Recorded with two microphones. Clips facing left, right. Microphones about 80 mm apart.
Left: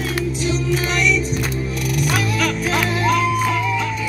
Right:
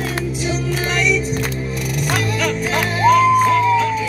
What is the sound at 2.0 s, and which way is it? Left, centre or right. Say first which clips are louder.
Music: even; centre.